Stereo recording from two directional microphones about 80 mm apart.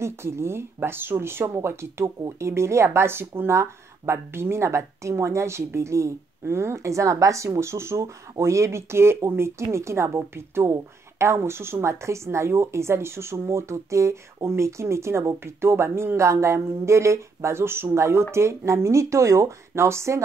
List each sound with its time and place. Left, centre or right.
0.0 s speech: right